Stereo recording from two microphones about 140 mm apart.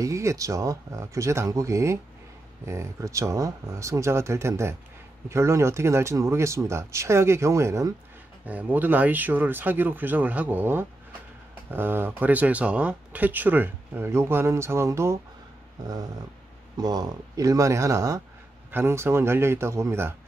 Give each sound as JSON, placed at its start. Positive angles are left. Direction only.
{"t": 0.0, "sound": "speech", "side_deg": -20}
{"t": 16.7, "sound": "speech", "side_deg": -30}